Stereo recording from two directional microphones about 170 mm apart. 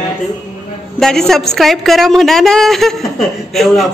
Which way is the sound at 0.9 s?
5° left (ahead or behind).